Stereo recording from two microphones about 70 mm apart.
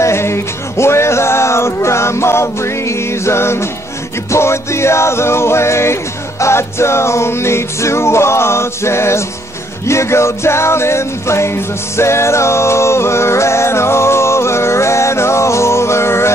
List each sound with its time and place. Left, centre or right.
0.0 s music: left